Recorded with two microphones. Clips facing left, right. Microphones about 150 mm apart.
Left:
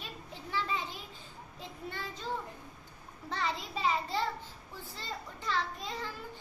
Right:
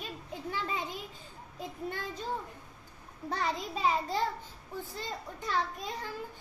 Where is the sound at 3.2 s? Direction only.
45° right (ahead or behind).